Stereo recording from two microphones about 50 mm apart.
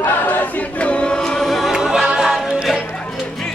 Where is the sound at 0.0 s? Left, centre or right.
Left; by 1.7 s centre.